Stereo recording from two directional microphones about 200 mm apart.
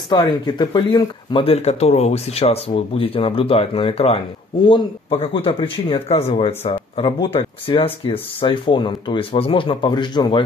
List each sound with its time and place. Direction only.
0.1 s speech: 20° left (ahead or behind)